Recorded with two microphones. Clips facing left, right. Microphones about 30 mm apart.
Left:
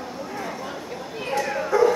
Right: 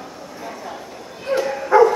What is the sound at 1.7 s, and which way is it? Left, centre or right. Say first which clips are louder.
Dog: right 7 dB; right.